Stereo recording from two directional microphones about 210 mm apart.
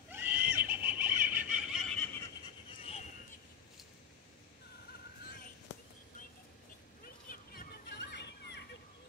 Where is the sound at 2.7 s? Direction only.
30° left (ahead or behind).